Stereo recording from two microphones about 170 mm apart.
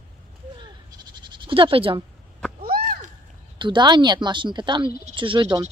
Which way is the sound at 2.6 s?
55° right (ahead or behind).